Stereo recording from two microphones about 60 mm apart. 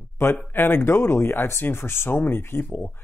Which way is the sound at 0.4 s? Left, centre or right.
Left.